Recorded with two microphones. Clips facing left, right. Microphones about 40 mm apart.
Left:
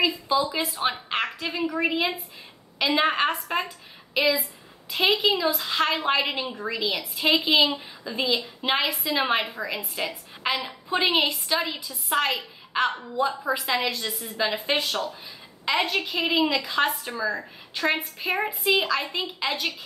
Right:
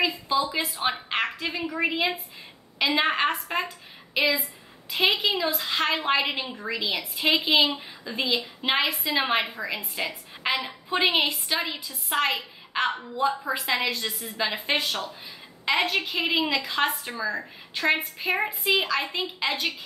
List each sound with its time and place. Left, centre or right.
0.3 s a woman's voice: centre